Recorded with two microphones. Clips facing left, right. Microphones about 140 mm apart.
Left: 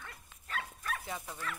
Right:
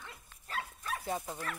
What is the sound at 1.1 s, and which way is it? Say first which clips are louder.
Speech: right 3 dB; 40° right (ahead or behind).